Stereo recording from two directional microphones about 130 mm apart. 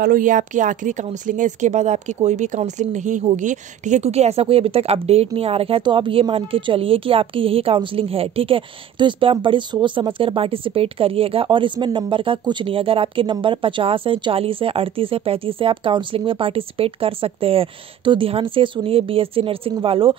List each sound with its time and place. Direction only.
0.1 s speech: 90° right; by 20.2 s 45° right (ahead or behind)